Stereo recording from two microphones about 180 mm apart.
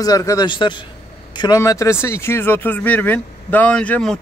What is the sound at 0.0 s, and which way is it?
A man's voice, 20° left (ahead or behind).